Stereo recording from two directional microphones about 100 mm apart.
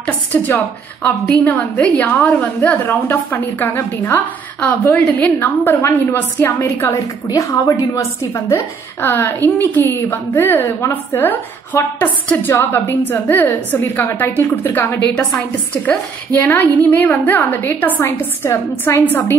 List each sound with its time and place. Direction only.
0.0 s a woman's voice: 15° left (ahead or behind)